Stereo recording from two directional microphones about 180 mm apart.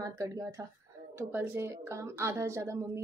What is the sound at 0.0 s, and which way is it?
A woman's voice, 20° right (ahead or behind).